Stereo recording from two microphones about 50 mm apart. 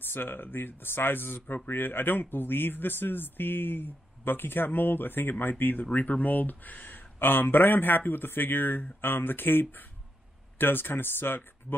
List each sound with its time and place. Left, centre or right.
0.0 s speech: left